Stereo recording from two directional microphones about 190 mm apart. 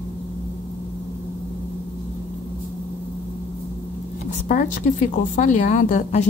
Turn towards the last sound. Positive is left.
turn(degrees=40)  # may be behind; listen again after turning